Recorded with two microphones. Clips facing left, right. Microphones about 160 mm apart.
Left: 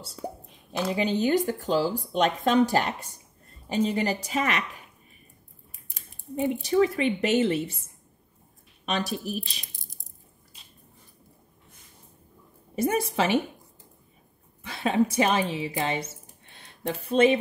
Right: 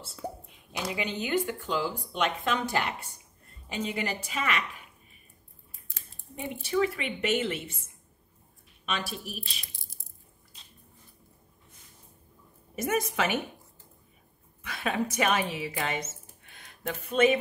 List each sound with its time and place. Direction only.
0.8 s speech: 35° left (ahead or behind)
6.6 s speech: 35° left (ahead or behind)
8.8 s speech: 40° left (ahead or behind)
9.8 s ratchet: 20° left (ahead or behind)
12.7 s speech: 30° left (ahead or behind)
14.6 s speech: 30° left (ahead or behind)